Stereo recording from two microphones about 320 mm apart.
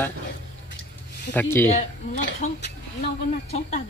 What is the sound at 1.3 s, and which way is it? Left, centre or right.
Speech, centre.